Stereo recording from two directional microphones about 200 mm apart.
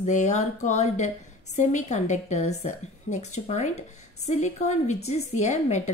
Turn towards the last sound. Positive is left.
turn(degrees=35)  # may be behind; listen again after turning